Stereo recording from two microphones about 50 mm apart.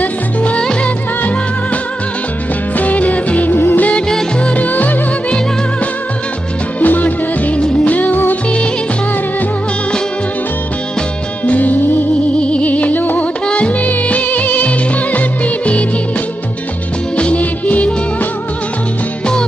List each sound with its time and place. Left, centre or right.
0.0 s music: left
0.6 s music: centre
2.8 s music: left
3.5 s music of bollywood: left
4.4 s music: left
6.8 s music: left
11.4 s music: left
13.5 s music: left
17.2 s music: left